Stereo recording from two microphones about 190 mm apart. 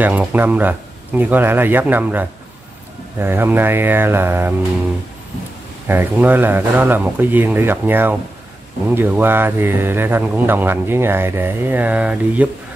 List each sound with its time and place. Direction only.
0.0 s speech: 10° right (ahead or behind)
5.9 s speech: 10° right (ahead or behind)